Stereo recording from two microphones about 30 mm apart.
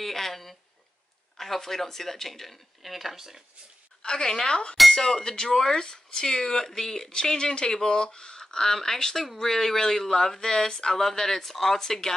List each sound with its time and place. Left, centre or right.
0.0 s a sound: centre
1.4 s speech: centre
2.8 s speech: centre
4.0 s a woman's voice: left